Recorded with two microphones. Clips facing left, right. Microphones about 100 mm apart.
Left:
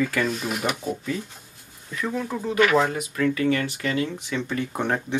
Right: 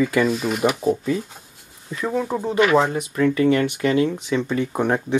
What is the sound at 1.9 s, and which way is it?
Speech, 35° right (ahead or behind).